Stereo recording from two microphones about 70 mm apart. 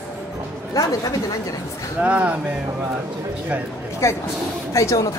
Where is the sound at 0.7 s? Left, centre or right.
Left.